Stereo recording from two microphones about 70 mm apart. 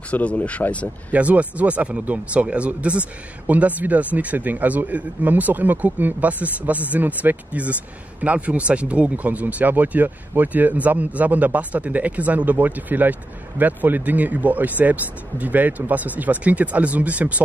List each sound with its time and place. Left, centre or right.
0.1 s speech: centre
1.1 s speech: centre